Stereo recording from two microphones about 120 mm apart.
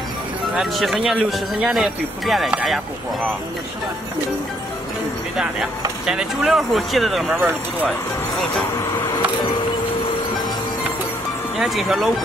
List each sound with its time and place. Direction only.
0.6 s speech: centre (ahead or behind)
6.0 s speech: 5° right (ahead or behind)
7.3 s speech: 15° right (ahead or behind)
8.7 s a sound: 30° left (ahead or behind)
11.6 s speech: centre (ahead or behind)